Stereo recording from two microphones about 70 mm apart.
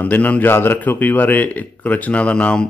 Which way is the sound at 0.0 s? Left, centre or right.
Left.